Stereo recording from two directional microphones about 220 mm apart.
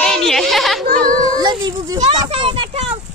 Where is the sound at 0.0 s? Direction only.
Centre (ahead or behind).